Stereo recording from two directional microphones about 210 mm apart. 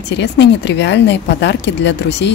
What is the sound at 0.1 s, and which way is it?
Speech, 55° left (ahead or behind).